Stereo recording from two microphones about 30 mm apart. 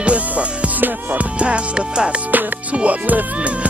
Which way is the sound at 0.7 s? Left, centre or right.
Right.